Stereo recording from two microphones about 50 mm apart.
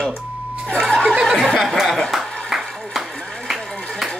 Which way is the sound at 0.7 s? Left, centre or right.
Centre.